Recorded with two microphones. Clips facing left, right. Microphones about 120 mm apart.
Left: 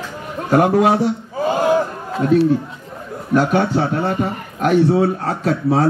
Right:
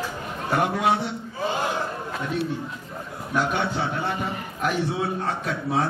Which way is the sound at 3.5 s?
60° left (ahead or behind).